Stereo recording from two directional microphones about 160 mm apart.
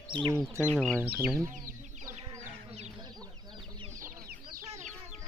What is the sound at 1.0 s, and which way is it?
Speech, 5° right (ahead or behind).